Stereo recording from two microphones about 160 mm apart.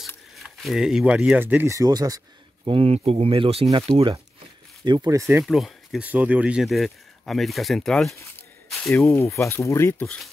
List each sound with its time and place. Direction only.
0.4 s speech: centre (ahead or behind); by 2.2 s 25° right (ahead or behind)
2.6 s speech: 35° right (ahead or behind)
4.8 s speech: 25° right (ahead or behind)
5.4 s speech: centre (ahead or behind)
8.6 s a sound: centre (ahead or behind)
9.1 s speech: 20° left (ahead or behind)
10.0 s speech: 5° left (ahead or behind)